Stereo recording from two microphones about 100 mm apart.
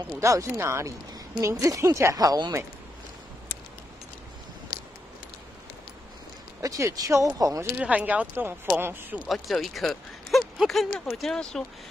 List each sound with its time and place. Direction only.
0.2 s speech: 30° right (ahead or behind)
6.6 s speech: 35° right (ahead or behind)
7.7 s speech: 15° right (ahead or behind)
9.3 s speech: centre (ahead or behind)